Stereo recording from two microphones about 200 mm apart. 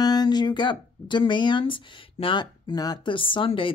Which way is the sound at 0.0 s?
20° left (ahead or behind).